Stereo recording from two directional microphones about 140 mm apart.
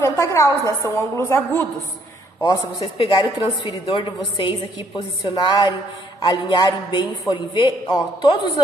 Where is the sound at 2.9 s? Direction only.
35° left (ahead or behind).